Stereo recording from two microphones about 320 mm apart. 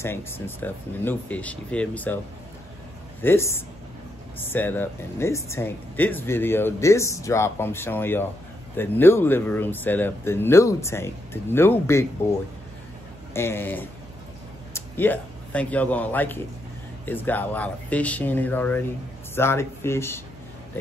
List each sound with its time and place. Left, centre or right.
0.0 s speech: centre
3.2 s speech: centre
13.3 s a man's voice: centre